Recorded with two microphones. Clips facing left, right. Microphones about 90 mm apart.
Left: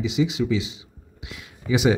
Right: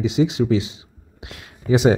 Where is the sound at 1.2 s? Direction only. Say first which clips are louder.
Right 1 dB; 50° right (ahead or behind).